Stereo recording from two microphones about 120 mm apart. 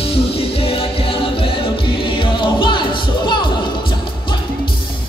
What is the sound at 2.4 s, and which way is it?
Music, 40° left (ahead or behind).